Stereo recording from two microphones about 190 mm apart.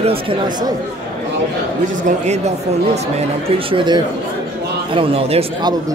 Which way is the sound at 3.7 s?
25° right (ahead or behind).